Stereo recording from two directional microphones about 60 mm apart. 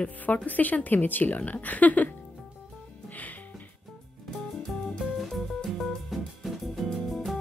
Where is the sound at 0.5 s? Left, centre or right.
Left.